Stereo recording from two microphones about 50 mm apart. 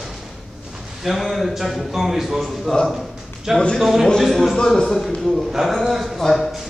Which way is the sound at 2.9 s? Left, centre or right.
Centre.